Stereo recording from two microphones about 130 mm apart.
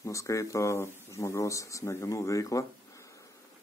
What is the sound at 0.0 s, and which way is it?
Speech, 25° left (ahead or behind).